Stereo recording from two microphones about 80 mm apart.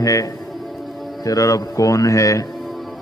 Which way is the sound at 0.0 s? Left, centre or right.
Left.